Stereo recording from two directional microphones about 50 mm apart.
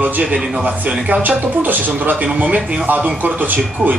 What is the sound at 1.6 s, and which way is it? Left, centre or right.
Speech, right.